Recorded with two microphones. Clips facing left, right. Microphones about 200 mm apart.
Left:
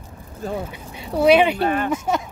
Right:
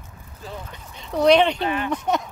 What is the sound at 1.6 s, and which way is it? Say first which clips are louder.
Speech: left 4 dB; 45° left (ahead or behind).